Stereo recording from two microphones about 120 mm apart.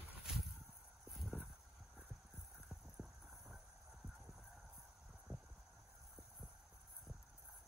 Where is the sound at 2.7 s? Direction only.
Centre (ahead or behind).